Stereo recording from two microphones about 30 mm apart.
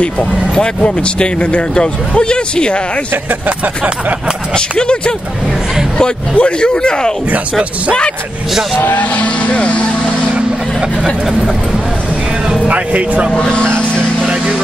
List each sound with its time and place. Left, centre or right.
0.0 s speech: left
3.4 s speech: right
4.6 s speech: left
9.1 s speech: left
10.3 s vehicle: right
12.6 s speech: right
13.4 s speech: left
14.2 s vehicle: right